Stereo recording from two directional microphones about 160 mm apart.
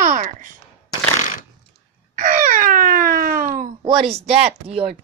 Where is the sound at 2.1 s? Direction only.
60° right (ahead or behind).